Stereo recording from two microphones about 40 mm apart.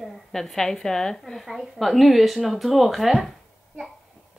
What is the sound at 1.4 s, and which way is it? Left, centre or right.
A woman's voice, centre.